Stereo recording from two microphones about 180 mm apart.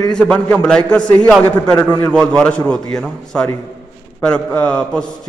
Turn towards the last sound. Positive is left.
turn(degrees=5)  # may be behind; listen again after turning